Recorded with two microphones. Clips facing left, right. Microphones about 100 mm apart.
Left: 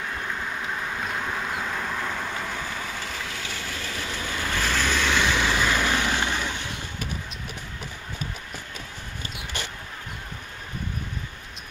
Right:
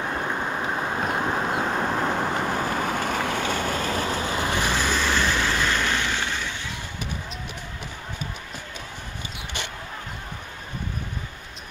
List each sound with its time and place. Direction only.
0.0 s vehicle: 40° right (ahead or behind)
4.5 s boat: 15° right (ahead or behind)
5.2 s vehicle: 10° left (ahead or behind)